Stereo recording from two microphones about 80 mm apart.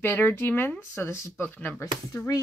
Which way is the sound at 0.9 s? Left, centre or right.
Left.